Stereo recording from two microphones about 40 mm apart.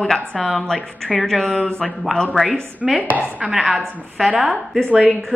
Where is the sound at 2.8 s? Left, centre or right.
Centre.